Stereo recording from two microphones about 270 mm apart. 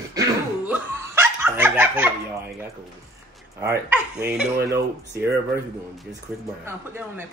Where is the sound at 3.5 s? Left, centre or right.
Centre.